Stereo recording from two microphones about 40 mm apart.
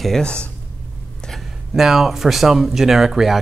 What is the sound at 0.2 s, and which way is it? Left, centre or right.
Speech, left.